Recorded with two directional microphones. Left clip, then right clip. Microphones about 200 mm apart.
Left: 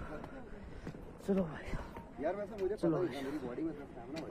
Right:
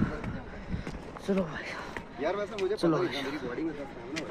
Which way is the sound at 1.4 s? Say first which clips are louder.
Right 7 dB; 15° left (ahead or behind).